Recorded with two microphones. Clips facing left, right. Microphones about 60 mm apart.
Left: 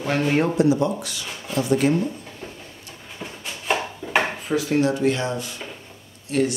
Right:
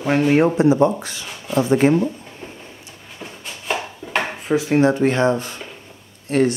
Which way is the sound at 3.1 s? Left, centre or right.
Centre.